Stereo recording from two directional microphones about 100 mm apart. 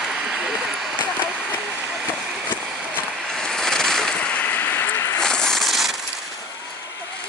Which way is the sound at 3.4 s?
5° left (ahead or behind).